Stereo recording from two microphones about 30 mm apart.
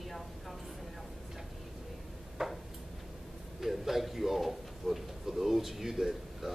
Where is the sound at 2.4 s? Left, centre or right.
Centre.